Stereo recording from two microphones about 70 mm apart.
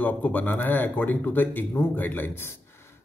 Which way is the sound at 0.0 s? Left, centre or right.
Left.